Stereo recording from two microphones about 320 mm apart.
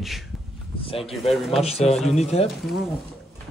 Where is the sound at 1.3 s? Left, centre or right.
Centre.